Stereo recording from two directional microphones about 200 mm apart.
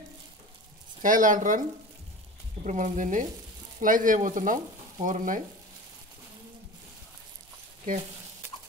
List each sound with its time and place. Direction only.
1.0 s speech: 40° right (ahead or behind)